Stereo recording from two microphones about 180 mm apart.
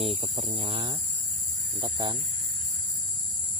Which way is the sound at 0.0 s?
30° right (ahead or behind).